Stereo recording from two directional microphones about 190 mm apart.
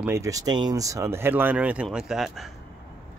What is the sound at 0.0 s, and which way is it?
Speech, 15° right (ahead or behind).